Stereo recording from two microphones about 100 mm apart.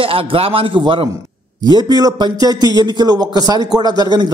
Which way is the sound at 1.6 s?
45° right (ahead or behind).